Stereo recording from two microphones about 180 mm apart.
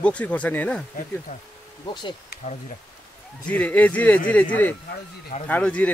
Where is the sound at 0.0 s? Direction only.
5° left (ahead or behind).